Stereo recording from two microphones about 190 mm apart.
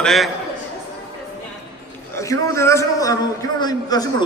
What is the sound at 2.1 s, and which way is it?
A man's voice, 15° left (ahead or behind).